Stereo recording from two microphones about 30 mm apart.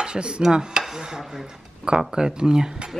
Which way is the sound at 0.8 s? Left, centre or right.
Centre.